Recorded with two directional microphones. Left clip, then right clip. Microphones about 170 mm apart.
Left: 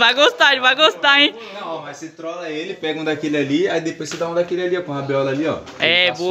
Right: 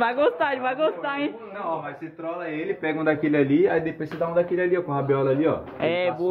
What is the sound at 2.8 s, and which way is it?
Speech, 5° left (ahead or behind).